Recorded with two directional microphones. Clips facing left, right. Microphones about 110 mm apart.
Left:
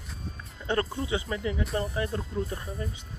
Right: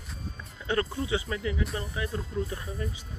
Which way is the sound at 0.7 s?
30° left (ahead or behind).